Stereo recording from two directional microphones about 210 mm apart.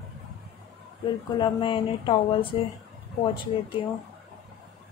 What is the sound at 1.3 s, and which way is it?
Speech, 20° left (ahead or behind).